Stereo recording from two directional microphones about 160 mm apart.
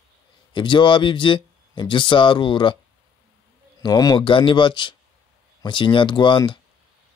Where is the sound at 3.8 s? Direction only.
25° left (ahead or behind).